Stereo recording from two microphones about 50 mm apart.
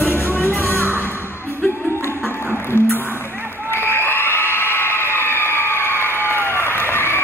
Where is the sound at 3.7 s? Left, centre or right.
Left.